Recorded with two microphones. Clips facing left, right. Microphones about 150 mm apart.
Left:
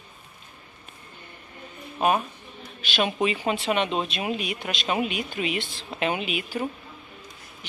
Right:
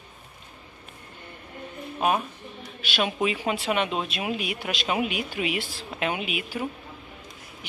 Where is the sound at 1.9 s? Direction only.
Centre (ahead or behind).